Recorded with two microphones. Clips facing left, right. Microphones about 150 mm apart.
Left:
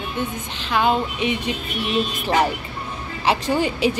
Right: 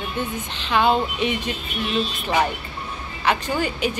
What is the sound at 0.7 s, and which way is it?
Speech, 10° left (ahead or behind).